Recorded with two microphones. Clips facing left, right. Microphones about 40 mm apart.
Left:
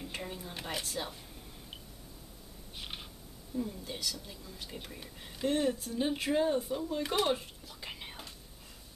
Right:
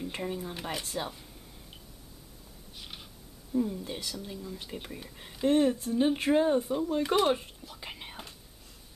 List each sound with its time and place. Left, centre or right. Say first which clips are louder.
0.1 s speech: right 6 dB; centre
2.7 s a sound: left 2 dB; centre
3.5 s speech: right 7 dB; centre
7.2 s whispering: right 5 dB; centre